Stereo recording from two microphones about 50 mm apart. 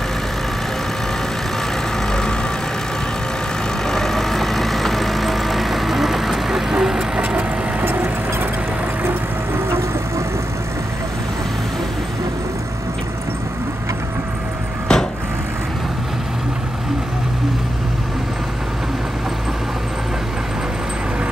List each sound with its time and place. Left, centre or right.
3.8 s vehicle: centre
7.2 s vehicle: right
7.8 s vehicle: right
9.0 s vehicle: right
14.9 s vehicle: centre